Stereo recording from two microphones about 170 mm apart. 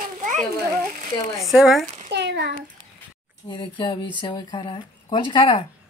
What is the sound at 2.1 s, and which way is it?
Speech, 80° right.